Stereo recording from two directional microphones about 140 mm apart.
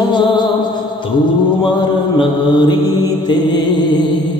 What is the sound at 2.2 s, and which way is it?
Mantra, 30° left (ahead or behind).